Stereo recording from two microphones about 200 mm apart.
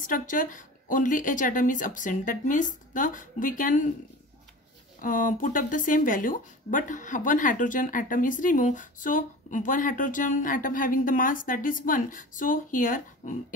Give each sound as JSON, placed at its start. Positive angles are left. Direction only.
{"t": 0.0, "sound": "speech", "side_deg": 40}
{"t": 5.0, "sound": "speech", "side_deg": 40}